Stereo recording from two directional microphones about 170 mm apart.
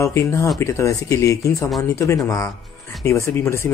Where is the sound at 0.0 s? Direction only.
15° left (ahead or behind).